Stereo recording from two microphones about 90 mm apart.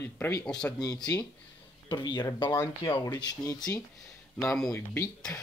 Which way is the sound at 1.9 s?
60° left (ahead or behind).